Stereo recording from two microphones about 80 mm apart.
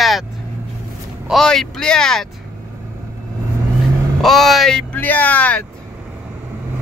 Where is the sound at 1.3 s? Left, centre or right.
Centre.